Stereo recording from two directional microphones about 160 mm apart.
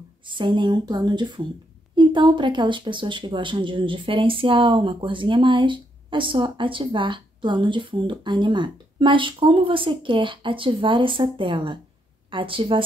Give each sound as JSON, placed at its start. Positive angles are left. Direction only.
{"t": 0.3, "sound": "speech", "side_deg": -30}